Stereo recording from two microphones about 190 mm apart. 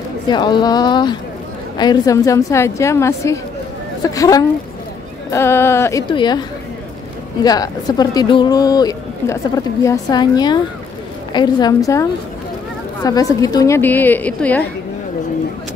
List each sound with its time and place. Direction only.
0.3 s a woman's voice: 25° left (ahead or behind)
7.4 s a woman's voice: 20° left (ahead or behind)